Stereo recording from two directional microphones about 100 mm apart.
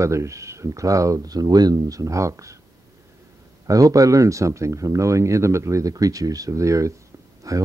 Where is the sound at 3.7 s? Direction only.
35° right (ahead or behind).